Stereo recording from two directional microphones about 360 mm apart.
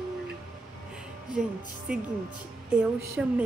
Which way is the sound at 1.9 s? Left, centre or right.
Centre.